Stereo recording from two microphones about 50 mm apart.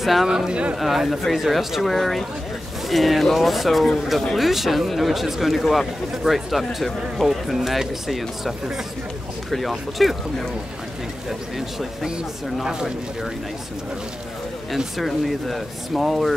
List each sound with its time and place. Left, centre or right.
0.0 s speech: centre
0.3 s speech: centre
0.7 s speech: centre
4.4 s speech: centre
15.0 s speech: centre